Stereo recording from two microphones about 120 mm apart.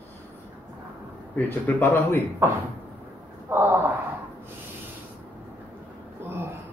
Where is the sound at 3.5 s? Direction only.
20° right (ahead or behind).